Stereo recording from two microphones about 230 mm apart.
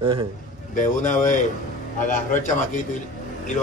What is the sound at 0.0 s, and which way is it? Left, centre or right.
Speech, right.